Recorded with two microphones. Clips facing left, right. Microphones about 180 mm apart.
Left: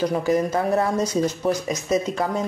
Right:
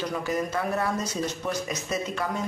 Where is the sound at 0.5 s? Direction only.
35° left (ahead or behind).